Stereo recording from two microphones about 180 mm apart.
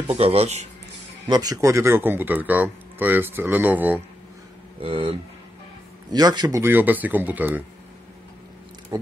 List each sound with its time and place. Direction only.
0.1 s speech: 35° right (ahead or behind)
1.2 s speech: 20° right (ahead or behind)
4.8 s speech: 30° right (ahead or behind)
6.1 s speech: 20° right (ahead or behind)